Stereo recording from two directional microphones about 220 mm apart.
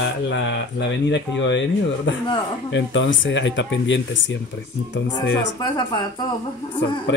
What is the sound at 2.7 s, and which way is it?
Speech, 55° left (ahead or behind).